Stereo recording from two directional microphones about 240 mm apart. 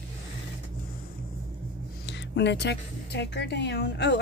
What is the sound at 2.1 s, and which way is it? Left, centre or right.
Speech, left.